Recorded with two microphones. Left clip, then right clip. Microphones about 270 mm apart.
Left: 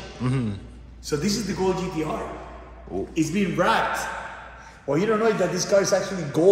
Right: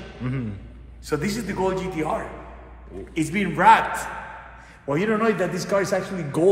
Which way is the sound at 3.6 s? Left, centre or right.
Right.